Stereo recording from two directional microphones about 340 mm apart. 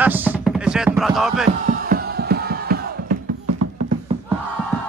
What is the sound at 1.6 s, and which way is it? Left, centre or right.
Music, right.